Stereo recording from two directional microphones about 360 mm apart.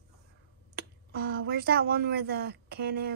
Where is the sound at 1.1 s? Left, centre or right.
Right.